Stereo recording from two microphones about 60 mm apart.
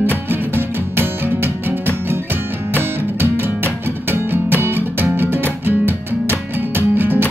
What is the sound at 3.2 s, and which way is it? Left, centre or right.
Music, right.